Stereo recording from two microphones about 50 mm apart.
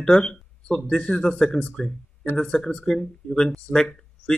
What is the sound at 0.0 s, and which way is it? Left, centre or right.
Speech, centre.